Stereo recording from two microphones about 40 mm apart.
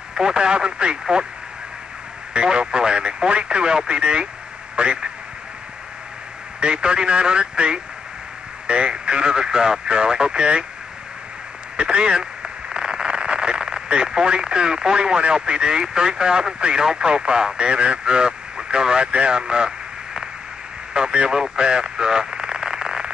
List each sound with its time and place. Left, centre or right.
0.1 s speech: centre
2.3 s a man's voice: right
6.6 s speech: right
11.7 s speech: right
20.9 s radio: right